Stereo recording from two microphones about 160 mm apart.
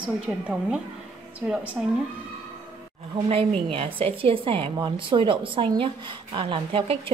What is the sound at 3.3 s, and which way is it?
A woman's voice, 35° right (ahead or behind).